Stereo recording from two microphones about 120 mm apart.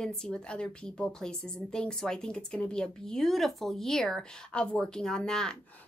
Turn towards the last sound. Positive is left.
turn(degrees=5)  # may be behind; listen again after turning